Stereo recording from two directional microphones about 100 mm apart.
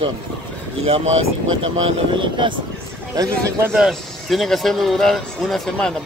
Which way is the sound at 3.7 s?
Centre (ahead or behind).